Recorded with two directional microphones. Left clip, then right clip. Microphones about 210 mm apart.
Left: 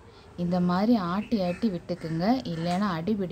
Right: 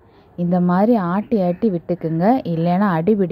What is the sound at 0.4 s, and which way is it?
A woman's voice, 25° right (ahead or behind).